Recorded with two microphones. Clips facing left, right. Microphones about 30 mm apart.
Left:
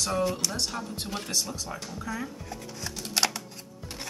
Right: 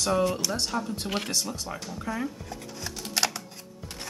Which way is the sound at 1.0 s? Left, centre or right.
Right.